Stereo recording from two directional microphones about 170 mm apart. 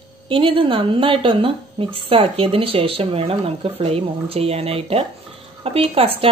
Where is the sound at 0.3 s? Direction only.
30° right (ahead or behind).